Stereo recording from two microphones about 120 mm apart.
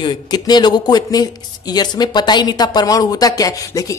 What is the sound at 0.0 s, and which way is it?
Speech, 35° left (ahead or behind).